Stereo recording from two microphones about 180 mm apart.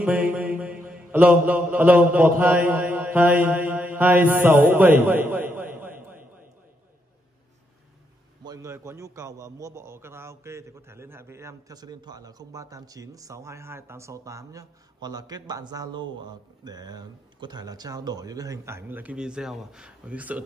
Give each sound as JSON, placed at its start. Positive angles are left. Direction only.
{"t": 0.0, "sound": "mantra", "side_deg": -10}
{"t": 5.0, "sound": "a man's voice", "side_deg": -10}
{"t": 5.6, "sound": "a sound", "side_deg": -10}
{"t": 8.5, "sound": "a man's voice", "side_deg": -15}